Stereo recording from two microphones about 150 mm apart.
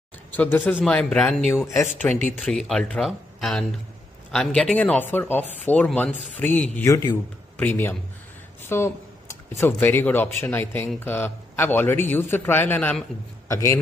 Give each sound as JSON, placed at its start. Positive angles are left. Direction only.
{"t": 0.3, "sound": "speech", "side_deg": 10}
{"t": 2.1, "sound": "speech", "side_deg": 15}
{"t": 2.4, "sound": "a man's voice", "side_deg": 5}